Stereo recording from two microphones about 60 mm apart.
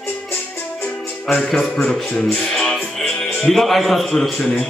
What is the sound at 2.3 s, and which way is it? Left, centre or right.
Music, centre.